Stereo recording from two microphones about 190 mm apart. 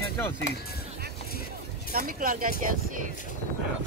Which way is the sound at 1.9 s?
50° right (ahead or behind).